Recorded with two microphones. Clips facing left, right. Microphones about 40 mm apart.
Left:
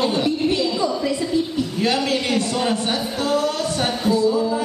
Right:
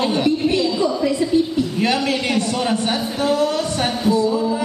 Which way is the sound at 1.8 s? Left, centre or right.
Right.